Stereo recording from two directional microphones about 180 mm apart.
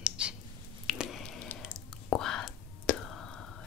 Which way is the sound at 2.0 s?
5° left (ahead or behind).